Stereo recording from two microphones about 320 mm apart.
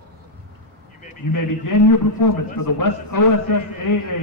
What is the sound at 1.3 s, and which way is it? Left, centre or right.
A man's voice, left.